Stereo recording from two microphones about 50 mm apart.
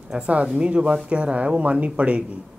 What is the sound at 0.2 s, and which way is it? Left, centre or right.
Speech, right.